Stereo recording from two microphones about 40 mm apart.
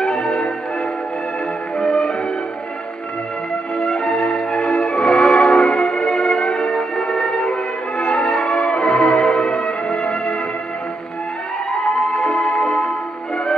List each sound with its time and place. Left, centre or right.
1.8 s music: centre
3.7 s music: centre
11.7 s music: centre
12.4 s music: left